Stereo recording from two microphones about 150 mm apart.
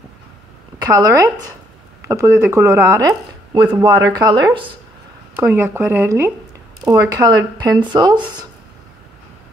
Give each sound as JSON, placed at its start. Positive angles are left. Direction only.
{"t": 0.9, "sound": "speech", "side_deg": -20}
{"t": 5.3, "sound": "speech", "side_deg": -15}